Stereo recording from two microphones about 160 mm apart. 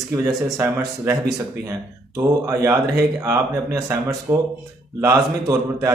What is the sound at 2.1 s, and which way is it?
A man's voice, 20° right (ahead or behind).